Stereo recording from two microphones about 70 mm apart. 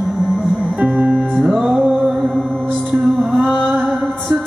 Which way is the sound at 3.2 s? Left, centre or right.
Centre.